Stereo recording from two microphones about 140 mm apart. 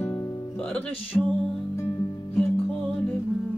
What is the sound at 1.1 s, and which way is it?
Music, 15° left (ahead or behind).